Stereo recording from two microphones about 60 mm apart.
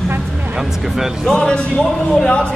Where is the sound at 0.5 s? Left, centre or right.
Centre.